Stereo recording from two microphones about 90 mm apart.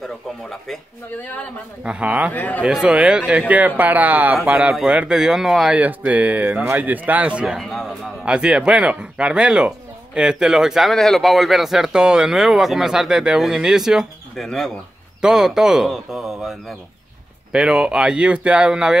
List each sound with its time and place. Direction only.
0.0 s a sound: 5° left (ahead or behind)
1.1 s speech: 20° left (ahead or behind)
1.8 s speech: 10° right (ahead or behind)
2.3 s speech: 20° left (ahead or behind)
2.6 s speech: 10° right (ahead or behind)
5.8 s speech: 15° right (ahead or behind)
7.6 s music: 5° left (ahead or behind)
8.3 s speech: 10° right (ahead or behind)
17.5 s speech: 10° right (ahead or behind)